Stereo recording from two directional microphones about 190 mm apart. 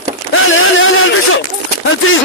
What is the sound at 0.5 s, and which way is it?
Speech, 90° left.